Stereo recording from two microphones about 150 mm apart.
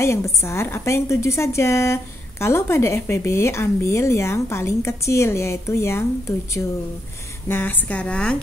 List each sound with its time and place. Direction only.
0.0 s a woman's voice: 20° left (ahead or behind)